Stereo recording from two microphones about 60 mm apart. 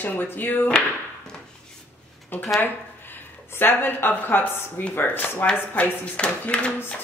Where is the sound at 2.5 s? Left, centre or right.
Left.